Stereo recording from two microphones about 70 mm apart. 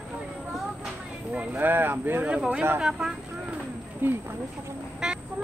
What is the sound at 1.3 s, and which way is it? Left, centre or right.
Speech, centre.